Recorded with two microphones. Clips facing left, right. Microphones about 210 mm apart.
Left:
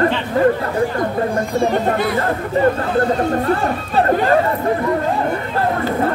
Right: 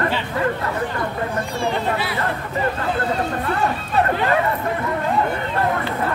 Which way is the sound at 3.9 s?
40° left (ahead or behind).